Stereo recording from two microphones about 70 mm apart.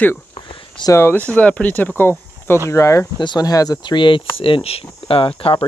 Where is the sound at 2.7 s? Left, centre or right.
Left.